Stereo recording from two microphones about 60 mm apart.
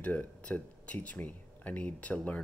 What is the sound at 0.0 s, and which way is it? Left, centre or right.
Speech, left.